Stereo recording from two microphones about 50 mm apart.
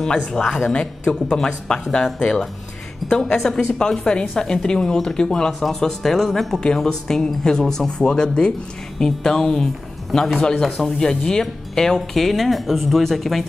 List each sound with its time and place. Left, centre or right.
0.0 s speech: centre